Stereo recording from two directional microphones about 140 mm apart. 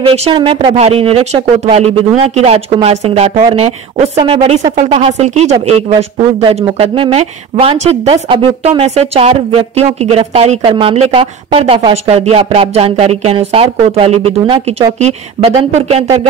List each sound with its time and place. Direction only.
0.0 s speech: 45° right (ahead or behind)
0.7 s a woman's voice: 45° right (ahead or behind)